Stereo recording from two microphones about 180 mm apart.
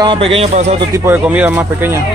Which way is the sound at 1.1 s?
10° right (ahead or behind).